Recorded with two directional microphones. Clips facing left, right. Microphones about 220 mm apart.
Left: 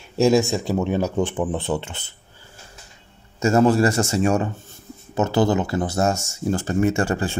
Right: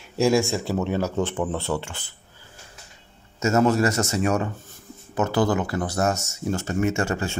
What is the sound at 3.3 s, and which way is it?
Speech, 30° left (ahead or behind).